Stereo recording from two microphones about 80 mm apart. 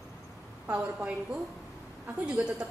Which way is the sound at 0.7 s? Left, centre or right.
Centre.